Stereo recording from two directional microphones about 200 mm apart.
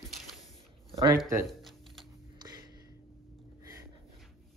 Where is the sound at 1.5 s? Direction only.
Centre (ahead or behind).